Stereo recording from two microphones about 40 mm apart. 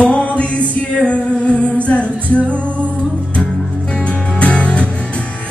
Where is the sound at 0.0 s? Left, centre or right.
Left.